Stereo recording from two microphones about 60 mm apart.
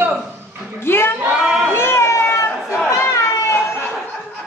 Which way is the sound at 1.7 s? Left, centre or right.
Left.